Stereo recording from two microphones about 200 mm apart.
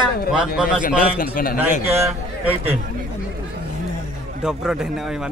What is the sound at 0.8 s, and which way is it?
Speech, 45° left (ahead or behind).